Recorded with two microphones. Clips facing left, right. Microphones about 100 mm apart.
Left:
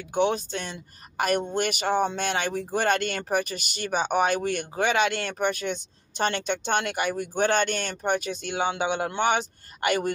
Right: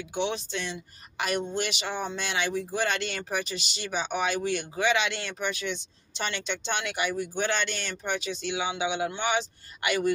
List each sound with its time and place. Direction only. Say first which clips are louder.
0.1 s speech: left 6 dB; 45° left (ahead or behind)